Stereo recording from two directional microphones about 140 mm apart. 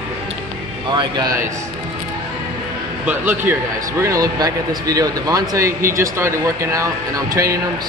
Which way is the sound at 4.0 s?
25° right (ahead or behind).